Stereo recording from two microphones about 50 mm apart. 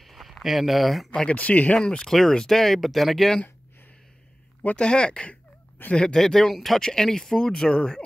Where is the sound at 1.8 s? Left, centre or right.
Centre.